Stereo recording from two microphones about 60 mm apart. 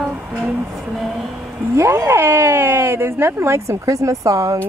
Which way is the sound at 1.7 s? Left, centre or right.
Right.